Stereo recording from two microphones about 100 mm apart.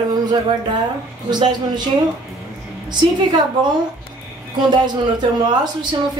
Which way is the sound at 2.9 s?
50° right (ahead or behind).